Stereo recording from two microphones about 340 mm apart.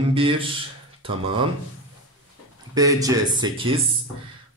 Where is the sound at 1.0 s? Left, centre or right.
Centre.